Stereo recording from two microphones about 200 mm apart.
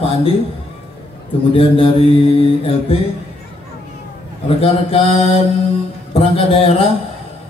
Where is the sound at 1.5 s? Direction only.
25° left (ahead or behind).